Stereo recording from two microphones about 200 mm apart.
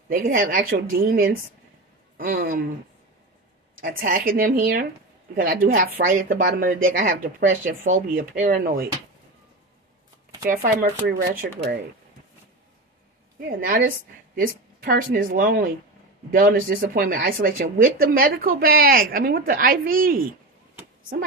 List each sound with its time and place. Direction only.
0.1 s speech: 45° right (ahead or behind)
3.8 s speech: 45° right (ahead or behind)
10.4 s speech: 45° right (ahead or behind)
14.3 s speech: 45° right (ahead or behind)